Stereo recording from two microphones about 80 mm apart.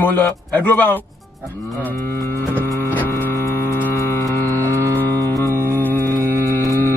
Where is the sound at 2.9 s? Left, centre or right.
Left.